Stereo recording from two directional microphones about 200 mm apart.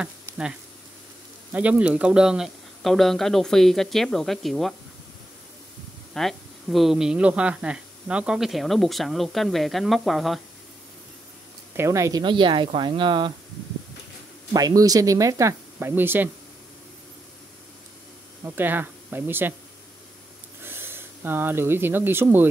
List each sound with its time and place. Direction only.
0.0 s speech: 5° right (ahead or behind)
6.1 s speech: centre (ahead or behind)
11.7 s speech: 15° right (ahead or behind)
14.5 s speech: 20° right (ahead or behind)
18.4 s speech: 10° right (ahead or behind)
20.6 s speech: 10° right (ahead or behind)